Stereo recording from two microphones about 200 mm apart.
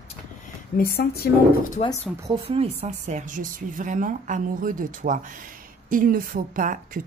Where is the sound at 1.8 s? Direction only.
30° left (ahead or behind).